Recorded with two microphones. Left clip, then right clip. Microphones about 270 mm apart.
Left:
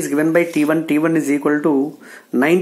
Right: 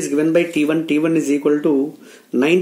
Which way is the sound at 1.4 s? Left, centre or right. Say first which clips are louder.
Even; centre.